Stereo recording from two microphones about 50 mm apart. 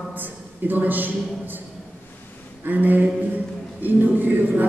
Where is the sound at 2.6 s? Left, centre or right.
Right.